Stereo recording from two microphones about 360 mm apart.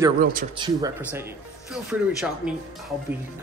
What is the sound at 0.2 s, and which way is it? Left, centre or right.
Speech, right.